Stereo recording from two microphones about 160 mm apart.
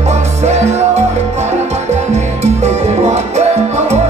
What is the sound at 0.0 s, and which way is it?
Music, 45° right (ahead or behind).